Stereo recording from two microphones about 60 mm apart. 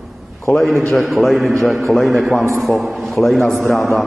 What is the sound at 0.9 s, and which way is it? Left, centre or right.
A man's voice, centre.